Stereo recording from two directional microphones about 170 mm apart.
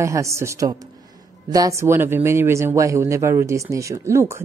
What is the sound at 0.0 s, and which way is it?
Speech, 15° right (ahead or behind).